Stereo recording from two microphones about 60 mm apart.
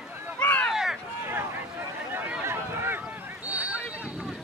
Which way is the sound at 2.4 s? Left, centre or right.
Right.